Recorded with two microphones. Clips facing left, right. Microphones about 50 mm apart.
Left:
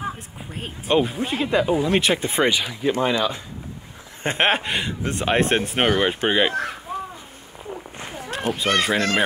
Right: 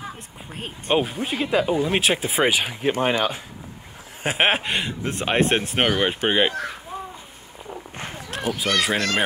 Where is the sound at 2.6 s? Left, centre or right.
Right.